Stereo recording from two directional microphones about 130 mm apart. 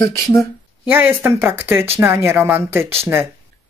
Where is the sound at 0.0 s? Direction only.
25° left (ahead or behind).